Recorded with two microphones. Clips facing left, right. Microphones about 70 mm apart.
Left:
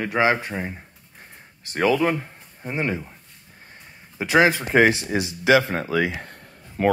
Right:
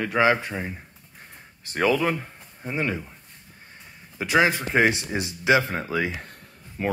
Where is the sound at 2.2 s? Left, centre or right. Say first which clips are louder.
Left 2 dB; centre.